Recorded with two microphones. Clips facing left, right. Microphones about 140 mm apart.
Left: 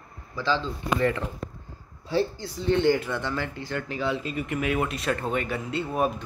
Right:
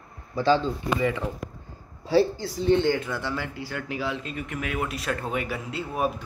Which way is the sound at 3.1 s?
10° right (ahead or behind).